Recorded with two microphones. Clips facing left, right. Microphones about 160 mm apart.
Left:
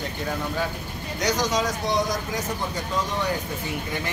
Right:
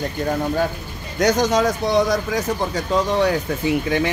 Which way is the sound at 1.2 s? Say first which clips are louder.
Right 7 dB; 55° right (ahead or behind).